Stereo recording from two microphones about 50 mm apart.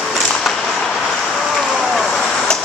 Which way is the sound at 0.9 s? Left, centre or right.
Centre.